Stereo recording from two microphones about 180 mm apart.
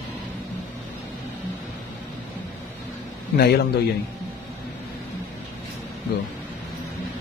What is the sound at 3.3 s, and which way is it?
Speech, 60° left (ahead or behind).